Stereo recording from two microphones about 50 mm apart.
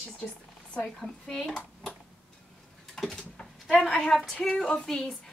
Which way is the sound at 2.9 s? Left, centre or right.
Centre.